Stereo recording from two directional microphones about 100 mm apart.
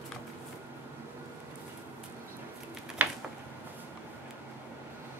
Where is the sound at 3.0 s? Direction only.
15° right (ahead or behind).